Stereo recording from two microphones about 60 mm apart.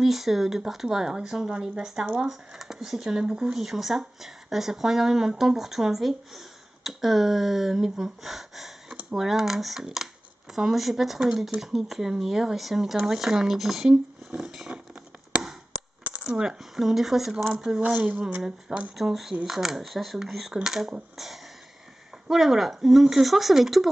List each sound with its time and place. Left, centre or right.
0.0 s speech: centre
16.3 s speech: centre
18.9 s speech: centre
22.3 s speech: centre